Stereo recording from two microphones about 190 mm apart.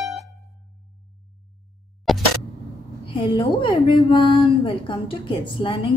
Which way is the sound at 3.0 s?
30° left (ahead or behind).